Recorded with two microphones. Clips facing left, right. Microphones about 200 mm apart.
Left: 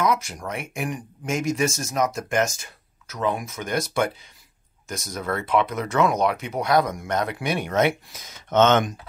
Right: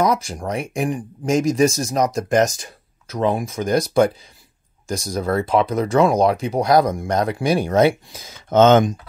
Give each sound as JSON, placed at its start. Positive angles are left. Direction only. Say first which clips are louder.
{"t": 0.0, "sound": "speech", "louder": "right 4 dB", "side_deg": -35}